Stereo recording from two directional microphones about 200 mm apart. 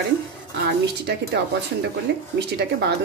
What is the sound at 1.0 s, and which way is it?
Speech, 55° right (ahead or behind).